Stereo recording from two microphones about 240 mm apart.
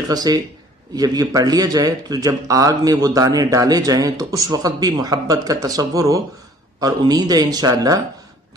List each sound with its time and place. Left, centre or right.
0.1 s a man's voice: centre